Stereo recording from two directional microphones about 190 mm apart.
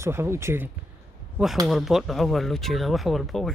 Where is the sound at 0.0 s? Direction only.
15° right (ahead or behind).